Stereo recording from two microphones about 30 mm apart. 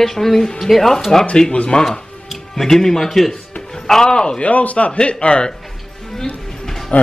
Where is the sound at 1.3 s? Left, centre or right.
Left.